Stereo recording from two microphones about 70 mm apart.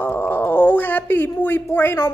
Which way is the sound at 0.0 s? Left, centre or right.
Left.